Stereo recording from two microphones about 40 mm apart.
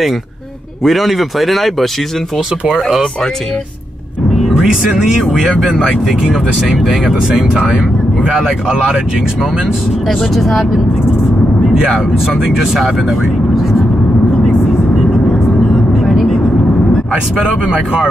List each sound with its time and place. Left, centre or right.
0.8 s speech: centre
4.4 s music: centre
5.4 s speech: centre
7.2 s speech: right
8.3 s speech: centre
10.0 s speech: centre
10.3 s speech: centre
11.7 s speech: centre
16.0 s vehicle: centre